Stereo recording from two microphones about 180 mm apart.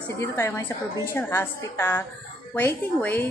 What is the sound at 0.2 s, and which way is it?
A woman's voice, 15° left (ahead or behind).